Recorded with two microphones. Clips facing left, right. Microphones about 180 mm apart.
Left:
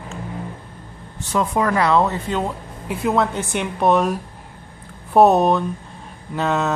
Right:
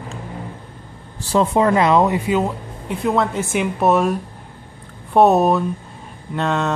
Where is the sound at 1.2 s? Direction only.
30° right (ahead or behind).